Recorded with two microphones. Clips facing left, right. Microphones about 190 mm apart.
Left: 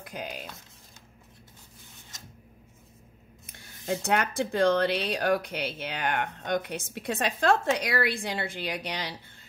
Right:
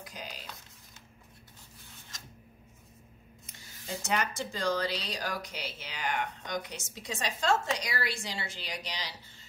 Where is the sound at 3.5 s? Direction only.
60° left (ahead or behind).